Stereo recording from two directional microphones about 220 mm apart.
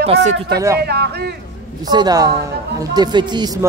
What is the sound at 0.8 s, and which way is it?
Speech, 45° right (ahead or behind).